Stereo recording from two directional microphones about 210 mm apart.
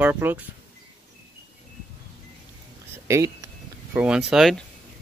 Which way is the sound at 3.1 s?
15° right (ahead or behind).